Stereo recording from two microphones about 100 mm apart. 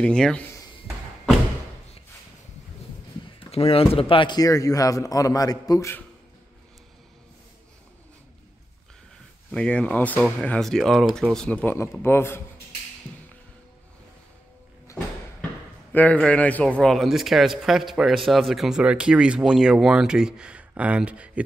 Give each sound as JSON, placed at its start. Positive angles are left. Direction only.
{"t": 0.0, "sound": "speech", "side_deg": 10}
{"t": 3.3, "sound": "a sound", "side_deg": 85}
{"t": 3.9, "sound": "speech", "side_deg": 65}
{"t": 4.4, "sound": "a man's voice", "side_deg": 35}
{"t": 9.5, "sound": "speech", "side_deg": 10}
{"t": 11.3, "sound": "speech", "side_deg": 10}
{"t": 11.6, "sound": "a man's voice", "side_deg": 25}
{"t": 15.9, "sound": "a man's voice", "side_deg": 15}